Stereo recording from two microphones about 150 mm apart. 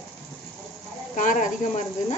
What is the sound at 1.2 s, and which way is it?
Speech, 55° left (ahead or behind).